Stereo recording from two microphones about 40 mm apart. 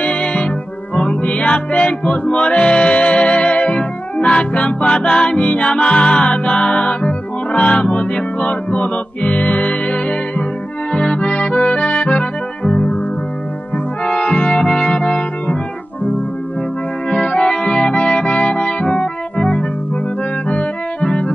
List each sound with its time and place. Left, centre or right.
0.0 s music: left
10.9 s accordion: left
14.0 s music: left
17.1 s music: left
20.4 s organ: left